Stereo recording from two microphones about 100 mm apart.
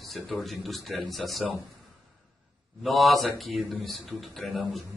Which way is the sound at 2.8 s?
Centre (ahead or behind).